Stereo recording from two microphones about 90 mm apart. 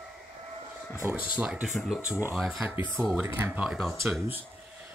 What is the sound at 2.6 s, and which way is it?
Speech, 20° right (ahead or behind).